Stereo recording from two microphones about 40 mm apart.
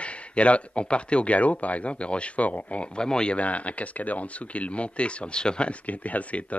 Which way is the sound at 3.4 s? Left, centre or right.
Left.